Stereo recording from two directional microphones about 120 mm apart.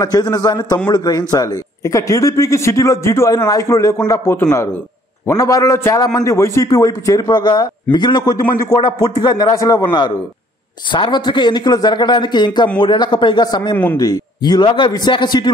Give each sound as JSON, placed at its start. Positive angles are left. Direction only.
{"t": 0.0, "sound": "a man's voice", "side_deg": 35}
{"t": 10.9, "sound": "a man's voice", "side_deg": 40}